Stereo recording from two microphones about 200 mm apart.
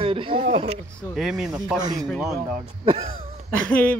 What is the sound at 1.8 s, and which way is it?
Speech, 20° right (ahead or behind).